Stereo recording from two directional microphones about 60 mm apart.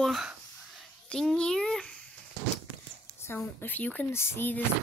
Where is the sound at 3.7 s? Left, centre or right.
Left.